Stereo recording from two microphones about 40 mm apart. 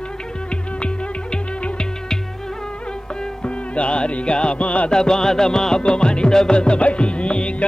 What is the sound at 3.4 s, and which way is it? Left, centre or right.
Music, left.